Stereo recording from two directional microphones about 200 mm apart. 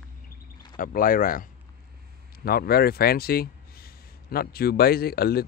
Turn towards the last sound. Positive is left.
turn(degrees=50)  # may be behind; listen again after turning